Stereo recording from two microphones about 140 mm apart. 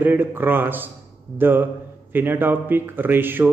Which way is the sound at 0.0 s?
15° right (ahead or behind).